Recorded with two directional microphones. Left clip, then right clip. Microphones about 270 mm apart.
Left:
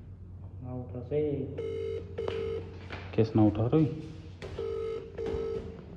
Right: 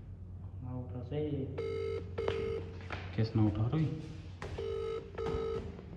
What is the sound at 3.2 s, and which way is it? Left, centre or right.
Speech, left.